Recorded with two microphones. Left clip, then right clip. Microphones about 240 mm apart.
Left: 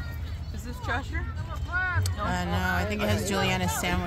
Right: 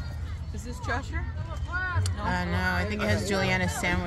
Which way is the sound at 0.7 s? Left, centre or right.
Right.